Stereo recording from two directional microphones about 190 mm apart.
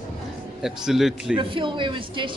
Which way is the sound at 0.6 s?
Centre (ahead or behind).